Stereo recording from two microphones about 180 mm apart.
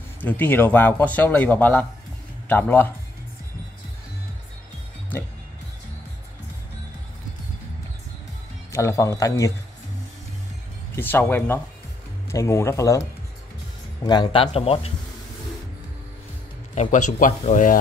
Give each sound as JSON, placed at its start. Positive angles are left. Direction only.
{"t": 0.2, "sound": "a man's voice", "side_deg": 10}
{"t": 8.7, "sound": "a man's voice", "side_deg": 15}
{"t": 11.0, "sound": "a man's voice", "side_deg": 10}
{"t": 14.0, "sound": "speech", "side_deg": 25}
{"t": 16.7, "sound": "speech", "side_deg": 40}